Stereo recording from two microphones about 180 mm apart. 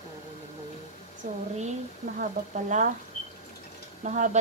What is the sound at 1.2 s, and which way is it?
Speech, 50° right (ahead or behind).